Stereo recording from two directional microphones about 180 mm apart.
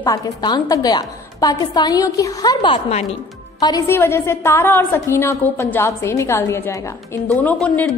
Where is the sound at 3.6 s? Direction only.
15° left (ahead or behind).